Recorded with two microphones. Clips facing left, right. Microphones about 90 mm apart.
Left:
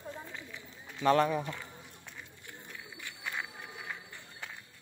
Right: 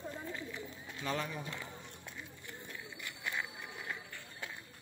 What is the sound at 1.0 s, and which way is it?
Speech, 55° left (ahead or behind).